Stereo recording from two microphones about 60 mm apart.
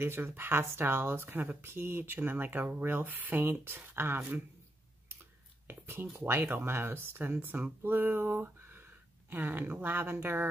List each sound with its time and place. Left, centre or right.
0.0 s speech: right
5.7 s a sound: right
6.1 s speech: right
7.3 s speech: right